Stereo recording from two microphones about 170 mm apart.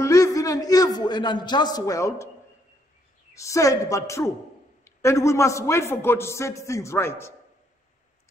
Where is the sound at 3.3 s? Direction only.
20° left (ahead or behind).